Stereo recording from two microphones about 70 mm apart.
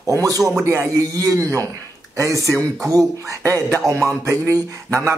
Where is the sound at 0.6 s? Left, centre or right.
Right.